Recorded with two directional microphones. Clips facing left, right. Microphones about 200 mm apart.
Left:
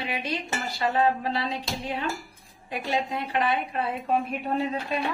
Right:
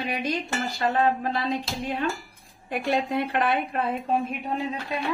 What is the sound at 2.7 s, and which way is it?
A woman's voice, 60° right (ahead or behind).